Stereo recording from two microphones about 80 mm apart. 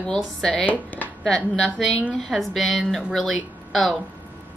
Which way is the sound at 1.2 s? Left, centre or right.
Centre.